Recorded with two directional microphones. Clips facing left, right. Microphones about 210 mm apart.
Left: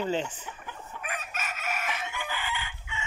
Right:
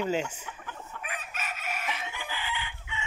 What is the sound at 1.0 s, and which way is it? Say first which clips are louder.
Chicken: left 2 dB; 45° left (ahead or behind).